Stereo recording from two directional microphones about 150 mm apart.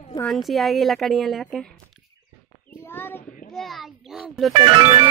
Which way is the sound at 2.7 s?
15° left (ahead or behind).